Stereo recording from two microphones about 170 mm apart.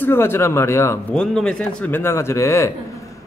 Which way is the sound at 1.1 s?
5° left (ahead or behind).